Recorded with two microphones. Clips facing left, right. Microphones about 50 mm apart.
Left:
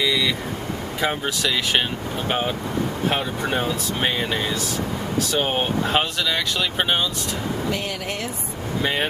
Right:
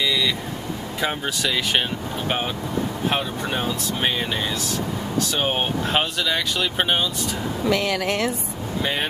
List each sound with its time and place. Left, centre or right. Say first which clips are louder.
1.0 s speech: left 1 dB; centre